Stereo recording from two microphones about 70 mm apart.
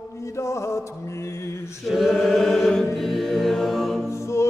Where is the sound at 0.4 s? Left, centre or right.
Left.